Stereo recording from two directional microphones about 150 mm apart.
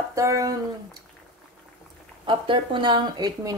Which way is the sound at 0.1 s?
20° right (ahead or behind).